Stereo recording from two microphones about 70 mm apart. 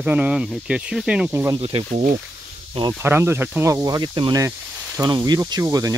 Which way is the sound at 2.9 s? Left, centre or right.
Right.